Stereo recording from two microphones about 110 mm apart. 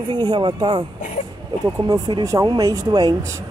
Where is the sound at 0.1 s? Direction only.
45° right (ahead or behind).